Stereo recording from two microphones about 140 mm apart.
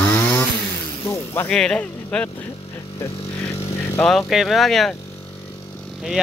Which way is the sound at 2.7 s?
20° left (ahead or behind).